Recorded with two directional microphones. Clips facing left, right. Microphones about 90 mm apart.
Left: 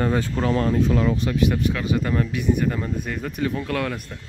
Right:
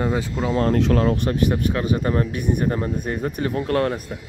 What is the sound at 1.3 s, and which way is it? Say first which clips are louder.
Speech: right 1 dB; 40° right (ahead or behind).